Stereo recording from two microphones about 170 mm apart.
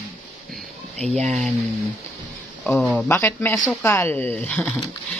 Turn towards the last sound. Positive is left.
turn(degrees=5)  # may be behind; listen again after turning